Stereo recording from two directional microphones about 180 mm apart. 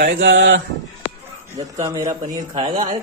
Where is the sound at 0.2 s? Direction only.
90° right.